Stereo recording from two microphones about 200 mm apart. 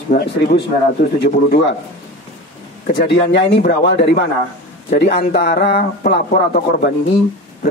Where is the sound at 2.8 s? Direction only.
55° left (ahead or behind).